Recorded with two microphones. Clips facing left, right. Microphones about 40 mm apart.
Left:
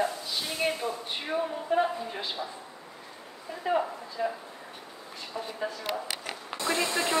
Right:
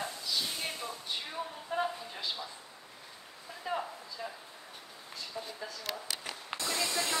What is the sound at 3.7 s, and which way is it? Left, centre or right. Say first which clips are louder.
Speech: left 8 dB; left.